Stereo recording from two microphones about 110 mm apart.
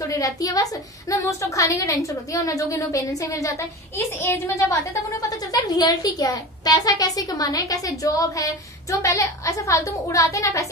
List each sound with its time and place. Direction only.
0.1 s a woman's voice: 35° left (ahead or behind)